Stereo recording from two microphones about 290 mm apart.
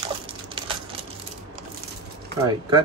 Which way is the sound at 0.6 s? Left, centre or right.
Centre.